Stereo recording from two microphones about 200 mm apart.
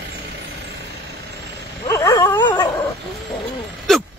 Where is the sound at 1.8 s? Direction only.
15° left (ahead or behind).